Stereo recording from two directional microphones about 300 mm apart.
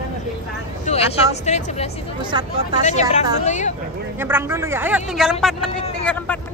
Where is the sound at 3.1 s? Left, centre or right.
Left.